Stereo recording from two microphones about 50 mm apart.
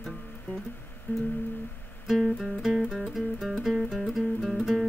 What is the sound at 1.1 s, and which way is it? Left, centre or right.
Music, left.